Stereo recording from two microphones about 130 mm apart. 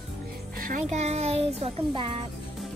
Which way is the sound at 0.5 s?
75° right (ahead or behind).